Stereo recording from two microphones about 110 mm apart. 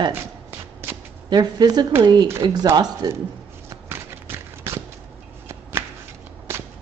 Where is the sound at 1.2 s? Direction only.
40° right (ahead or behind).